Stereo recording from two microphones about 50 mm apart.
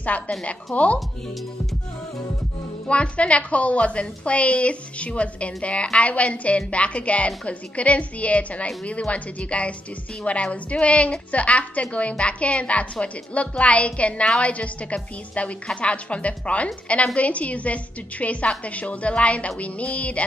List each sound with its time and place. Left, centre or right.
0.1 s a woman's voice: left
2.9 s a woman's voice: left